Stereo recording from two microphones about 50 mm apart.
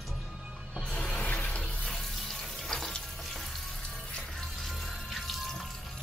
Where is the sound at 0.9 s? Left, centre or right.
Left.